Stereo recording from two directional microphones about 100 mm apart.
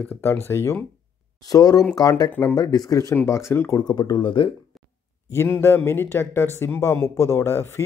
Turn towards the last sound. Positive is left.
turn(degrees=25)  # may be behind; listen again after turning